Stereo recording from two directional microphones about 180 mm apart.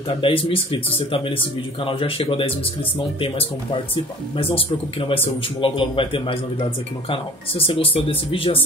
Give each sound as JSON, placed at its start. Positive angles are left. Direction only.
{"t": 0.2, "sound": "a man's voice", "side_deg": 30}